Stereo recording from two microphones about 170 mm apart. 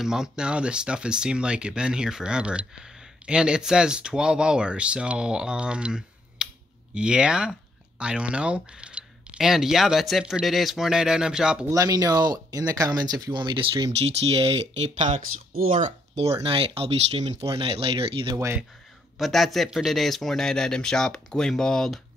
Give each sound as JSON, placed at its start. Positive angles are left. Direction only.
{"t": 0.0, "sound": "speech", "side_deg": -5}
{"t": 11.7, "sound": "speech", "side_deg": -20}
{"t": 14.8, "sound": "speech", "side_deg": -45}
{"t": 16.3, "sound": "speech", "side_deg": -30}
{"t": 19.1, "sound": "speech", "side_deg": 0}